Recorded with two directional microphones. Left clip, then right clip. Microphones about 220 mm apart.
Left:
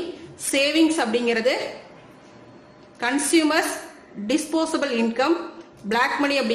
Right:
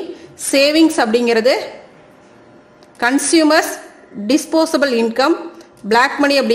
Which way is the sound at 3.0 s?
35° right (ahead or behind).